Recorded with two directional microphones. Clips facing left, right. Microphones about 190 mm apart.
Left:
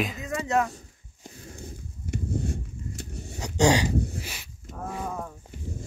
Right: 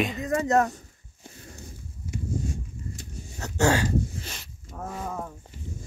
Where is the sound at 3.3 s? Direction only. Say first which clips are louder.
Left 2 dB; 15° left (ahead or behind).